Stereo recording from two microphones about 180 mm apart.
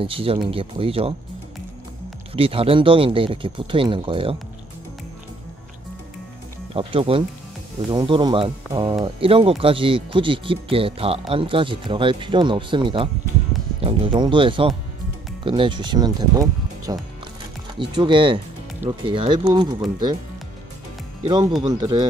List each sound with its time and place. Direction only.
0.0 s speech: 30° right (ahead or behind)
2.3 s speech: 30° right (ahead or behind)
6.7 s speech: 30° right (ahead or behind)
21.3 s speech: 25° right (ahead or behind)